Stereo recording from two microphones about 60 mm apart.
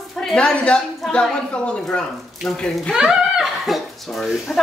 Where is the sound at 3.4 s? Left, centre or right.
Centre.